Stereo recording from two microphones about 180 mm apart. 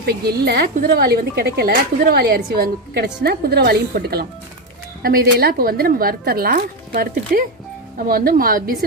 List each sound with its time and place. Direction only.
0.0 s a woman's voice: 60° right (ahead or behind)